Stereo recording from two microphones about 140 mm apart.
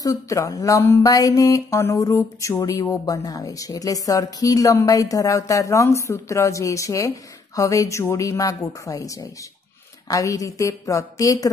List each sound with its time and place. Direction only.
0.0 s speech: 25° left (ahead or behind)